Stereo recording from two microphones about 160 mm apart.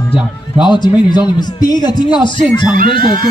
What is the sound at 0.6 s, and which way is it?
A man's voice, 30° left (ahead or behind).